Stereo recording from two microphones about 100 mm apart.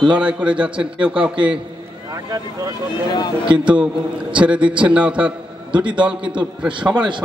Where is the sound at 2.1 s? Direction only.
35° right (ahead or behind).